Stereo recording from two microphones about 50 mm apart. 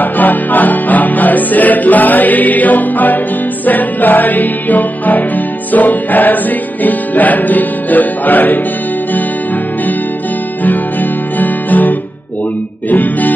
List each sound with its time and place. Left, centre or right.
0.0 s music: left
10.6 s guitar: left
12.9 s music: left